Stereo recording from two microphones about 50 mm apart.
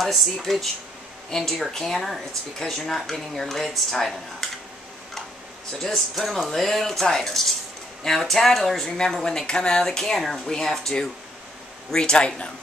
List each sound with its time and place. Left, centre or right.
0.0 s speech: centre
5.7 s speech: centre